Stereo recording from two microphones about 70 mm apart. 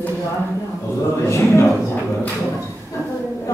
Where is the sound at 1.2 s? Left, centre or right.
Left.